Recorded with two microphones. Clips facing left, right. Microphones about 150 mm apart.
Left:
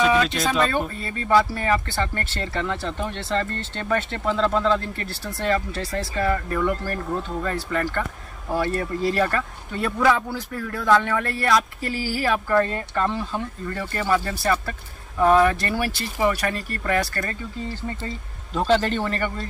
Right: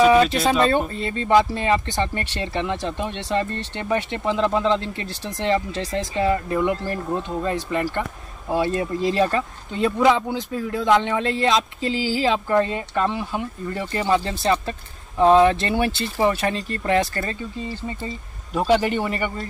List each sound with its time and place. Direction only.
0.5 s speech: 30° right (ahead or behind); by 19.4 s 15° right (ahead or behind)